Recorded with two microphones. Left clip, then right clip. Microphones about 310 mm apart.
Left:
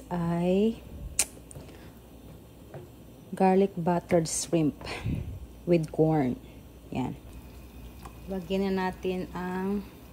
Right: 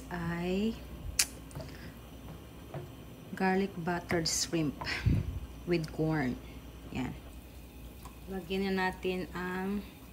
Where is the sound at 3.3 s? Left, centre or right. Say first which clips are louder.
Left 8 dB; centre.